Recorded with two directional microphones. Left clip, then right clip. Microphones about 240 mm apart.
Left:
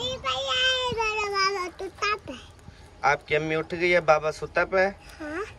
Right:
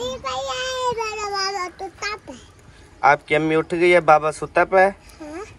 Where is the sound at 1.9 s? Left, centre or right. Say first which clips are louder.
Left 1 dB; centre.